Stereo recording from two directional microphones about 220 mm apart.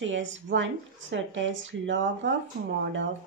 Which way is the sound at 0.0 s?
60° right (ahead or behind).